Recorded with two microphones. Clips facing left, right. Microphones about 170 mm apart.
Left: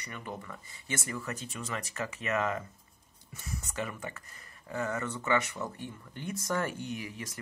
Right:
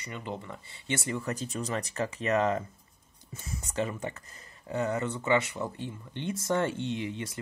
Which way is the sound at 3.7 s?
25° right (ahead or behind).